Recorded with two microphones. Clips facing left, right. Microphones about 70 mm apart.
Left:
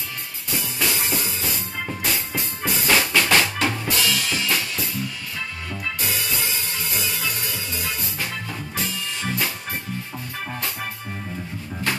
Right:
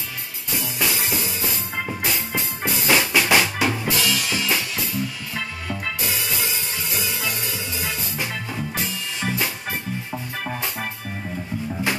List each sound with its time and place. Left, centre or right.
0.6 s music: centre
7.0 s music: centre